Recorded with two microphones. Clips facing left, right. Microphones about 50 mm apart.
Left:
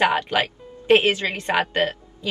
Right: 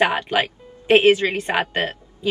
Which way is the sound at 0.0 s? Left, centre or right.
Right.